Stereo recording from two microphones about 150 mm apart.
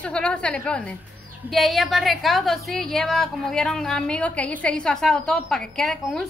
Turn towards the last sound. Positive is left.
turn(degrees=5)  # may be behind; listen again after turning